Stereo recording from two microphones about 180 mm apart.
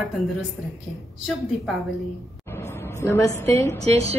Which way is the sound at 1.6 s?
Centre (ahead or behind).